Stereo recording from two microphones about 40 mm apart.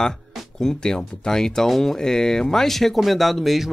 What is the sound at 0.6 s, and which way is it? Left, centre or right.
Speech, centre.